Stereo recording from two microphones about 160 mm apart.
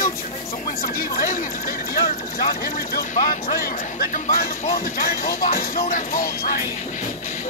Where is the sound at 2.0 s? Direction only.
55° left (ahead or behind).